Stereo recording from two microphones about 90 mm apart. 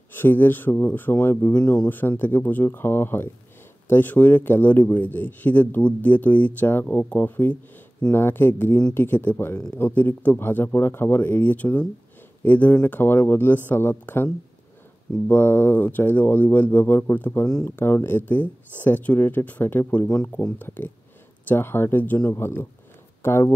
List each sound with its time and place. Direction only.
0.1 s speech: 25° left (ahead or behind)